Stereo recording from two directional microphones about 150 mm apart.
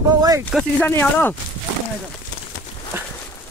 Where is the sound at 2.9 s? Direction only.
15° right (ahead or behind).